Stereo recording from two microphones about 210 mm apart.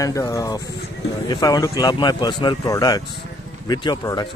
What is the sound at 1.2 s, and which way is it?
Speech, 20° left (ahead or behind).